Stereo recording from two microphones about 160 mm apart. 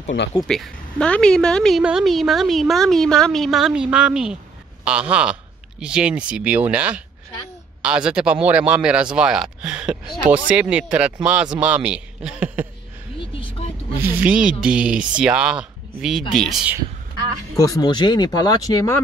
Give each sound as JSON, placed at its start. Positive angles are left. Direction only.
{"t": 0.4, "sound": "a woman's voice", "side_deg": 0}
{"t": 13.2, "sound": "a sound", "side_deg": 35}
{"t": 14.0, "sound": "a woman's voice", "side_deg": -5}
{"t": 17.6, "sound": "speech", "side_deg": 20}